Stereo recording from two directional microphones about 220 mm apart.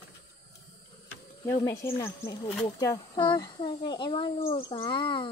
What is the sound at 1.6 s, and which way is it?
Speech, 10° left (ahead or behind).